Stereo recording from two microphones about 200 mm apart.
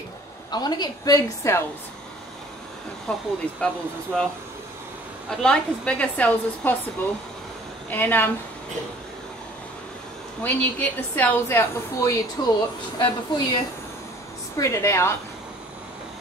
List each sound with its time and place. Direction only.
0.5 s a woman's voice: 20° left (ahead or behind)
3.1 s speech: 5° left (ahead or behind)
5.4 s a woman's voice: 5° left (ahead or behind)
7.9 s a woman's voice: 10° left (ahead or behind)
10.4 s a woman's voice: 10° left (ahead or behind)
14.6 s a woman's voice: 15° left (ahead or behind)